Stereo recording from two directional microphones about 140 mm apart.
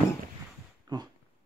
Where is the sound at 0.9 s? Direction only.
30° right (ahead or behind).